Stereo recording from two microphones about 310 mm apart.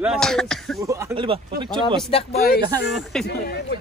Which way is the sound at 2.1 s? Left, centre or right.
Left.